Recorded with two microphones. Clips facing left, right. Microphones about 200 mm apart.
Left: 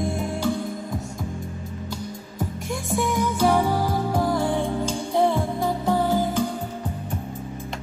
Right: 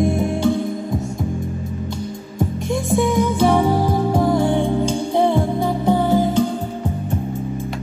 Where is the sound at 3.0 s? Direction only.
25° right (ahead or behind).